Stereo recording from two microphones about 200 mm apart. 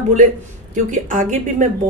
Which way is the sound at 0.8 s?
40° right (ahead or behind).